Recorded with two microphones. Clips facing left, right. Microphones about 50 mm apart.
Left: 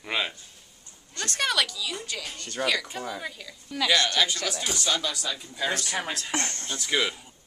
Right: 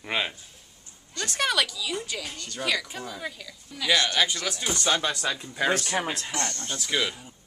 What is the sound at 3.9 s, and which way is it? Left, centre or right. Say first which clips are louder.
Speech: right 1 dB; centre.